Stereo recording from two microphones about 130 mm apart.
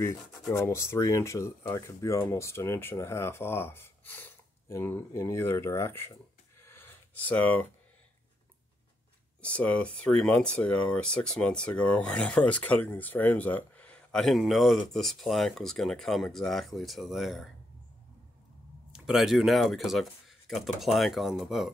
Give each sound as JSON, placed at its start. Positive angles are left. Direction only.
{"t": 0.5, "sound": "speech", "side_deg": 20}
{"t": 6.6, "sound": "a sound", "side_deg": 15}
{"t": 9.4, "sound": "speech", "side_deg": 10}
{"t": 18.9, "sound": "speech", "side_deg": -5}